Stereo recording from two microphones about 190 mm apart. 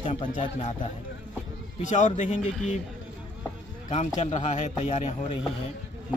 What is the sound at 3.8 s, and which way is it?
A man's voice, 40° left (ahead or behind).